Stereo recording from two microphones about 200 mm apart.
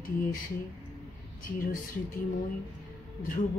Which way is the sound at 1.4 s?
45° left (ahead or behind).